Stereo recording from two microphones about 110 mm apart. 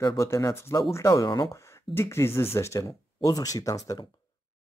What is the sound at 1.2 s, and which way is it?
Speech, 45° left (ahead or behind).